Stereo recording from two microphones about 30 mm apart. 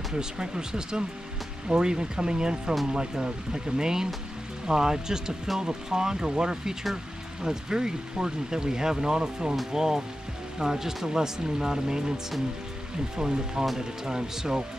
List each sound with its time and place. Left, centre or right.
0.1 s speech: right